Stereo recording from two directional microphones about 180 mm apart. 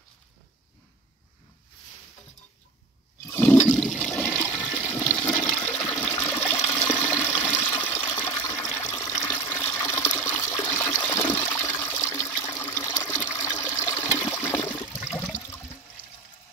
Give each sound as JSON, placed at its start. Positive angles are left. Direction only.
{"t": 3.3, "sound": "toilet flush", "side_deg": 15}
{"t": 6.7, "sound": "water", "side_deg": 10}
{"t": 8.4, "sound": "water", "side_deg": 20}
{"t": 8.6, "sound": "water", "side_deg": 10}
{"t": 10.7, "sound": "toilet flush", "side_deg": 10}
{"t": 11.3, "sound": "water", "side_deg": 10}
{"t": 13.4, "sound": "toilet flush", "side_deg": 15}